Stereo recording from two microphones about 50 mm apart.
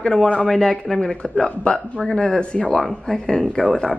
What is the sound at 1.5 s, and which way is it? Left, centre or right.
Speech, left.